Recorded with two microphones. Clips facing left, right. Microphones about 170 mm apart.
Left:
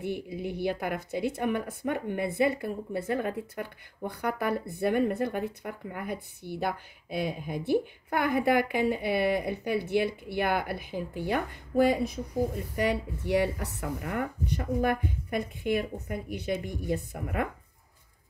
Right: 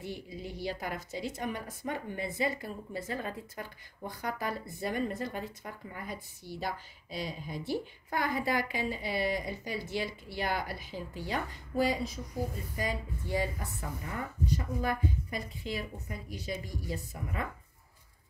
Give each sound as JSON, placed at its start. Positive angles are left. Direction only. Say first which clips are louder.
{"t": 0.0, "sound": "a woman's voice", "louder": "left 7 dB", "side_deg": 60}